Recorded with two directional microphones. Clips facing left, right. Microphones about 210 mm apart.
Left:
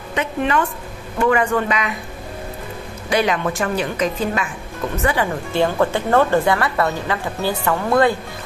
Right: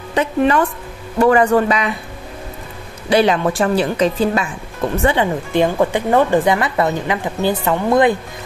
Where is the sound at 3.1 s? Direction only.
30° right (ahead or behind).